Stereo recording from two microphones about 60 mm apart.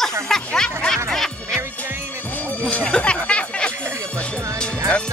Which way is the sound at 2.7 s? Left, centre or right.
Centre.